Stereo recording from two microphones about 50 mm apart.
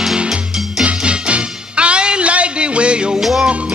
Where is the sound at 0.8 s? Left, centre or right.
Right.